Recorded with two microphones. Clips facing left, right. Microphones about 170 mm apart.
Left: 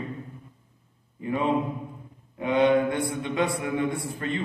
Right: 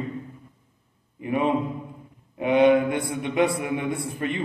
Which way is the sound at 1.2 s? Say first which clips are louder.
Right 3 dB; 20° right (ahead or behind).